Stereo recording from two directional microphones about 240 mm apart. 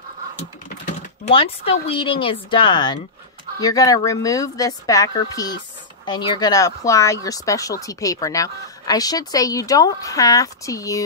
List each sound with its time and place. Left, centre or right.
1.2 s speech: left